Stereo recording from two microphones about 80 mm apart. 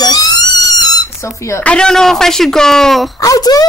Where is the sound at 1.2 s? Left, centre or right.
Left.